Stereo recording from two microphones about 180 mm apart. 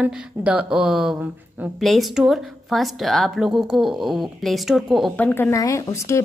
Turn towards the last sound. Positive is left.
turn(degrees=15)  # may be behind; listen again after turning